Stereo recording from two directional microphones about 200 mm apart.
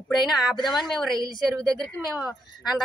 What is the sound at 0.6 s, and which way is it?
Speech, 20° left (ahead or behind).